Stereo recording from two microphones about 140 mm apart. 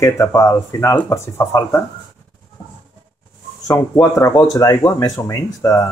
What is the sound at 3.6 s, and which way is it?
Speech, 25° left (ahead or behind).